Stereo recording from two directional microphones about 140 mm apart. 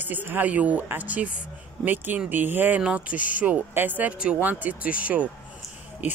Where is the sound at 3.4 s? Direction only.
10° right (ahead or behind).